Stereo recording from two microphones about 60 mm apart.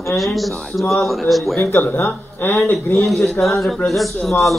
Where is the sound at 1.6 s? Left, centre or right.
Left.